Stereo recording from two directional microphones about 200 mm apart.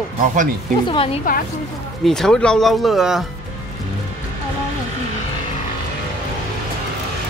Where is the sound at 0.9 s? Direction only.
25° left (ahead or behind).